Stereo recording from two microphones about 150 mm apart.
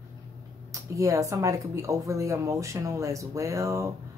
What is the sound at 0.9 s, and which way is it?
A woman's voice, 20° right (ahead or behind).